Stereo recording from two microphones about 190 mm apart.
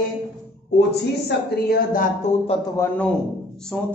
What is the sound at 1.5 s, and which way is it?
Speech, 50° left (ahead or behind).